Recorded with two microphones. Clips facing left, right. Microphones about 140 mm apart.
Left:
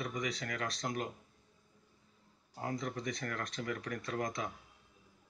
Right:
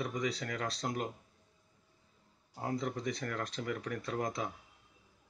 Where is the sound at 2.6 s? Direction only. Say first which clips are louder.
Right 2 dB; 25° right (ahead or behind).